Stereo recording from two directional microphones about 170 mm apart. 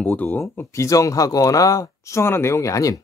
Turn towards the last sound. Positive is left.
turn(degrees=20)  # may be behind; listen again after turning